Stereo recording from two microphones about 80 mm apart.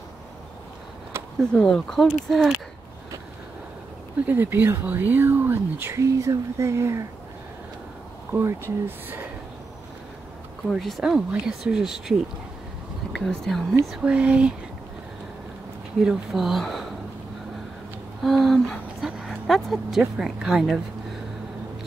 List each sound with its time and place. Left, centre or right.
1.1 s a sound: right
1.5 s speech: centre
4.3 s speech: right
8.3 s speech: right
10.7 s speech: centre
13.1 s speech: centre
13.8 s speech: centre
16.0 s speech: centre
18.2 s a sound: centre
19.0 s speech: centre